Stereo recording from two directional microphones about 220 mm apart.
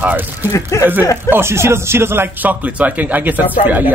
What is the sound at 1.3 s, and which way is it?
Speech, 10° right (ahead or behind).